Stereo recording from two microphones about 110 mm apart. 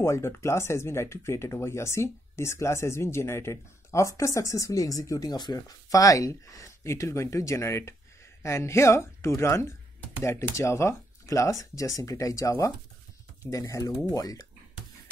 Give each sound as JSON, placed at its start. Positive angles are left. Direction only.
{"t": 0.0, "sound": "speech", "side_deg": 25}